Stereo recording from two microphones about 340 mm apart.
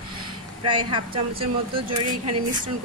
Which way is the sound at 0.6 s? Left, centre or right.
Centre.